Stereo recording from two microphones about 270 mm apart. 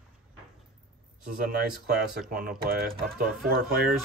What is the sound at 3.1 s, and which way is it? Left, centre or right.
Speech, centre.